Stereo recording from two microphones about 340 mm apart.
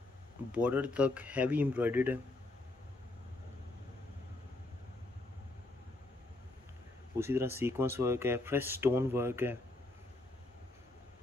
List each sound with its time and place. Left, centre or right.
0.5 s speech: centre
7.2 s speech: centre